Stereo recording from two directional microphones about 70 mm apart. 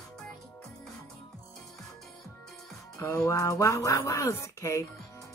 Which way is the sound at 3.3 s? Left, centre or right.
Left.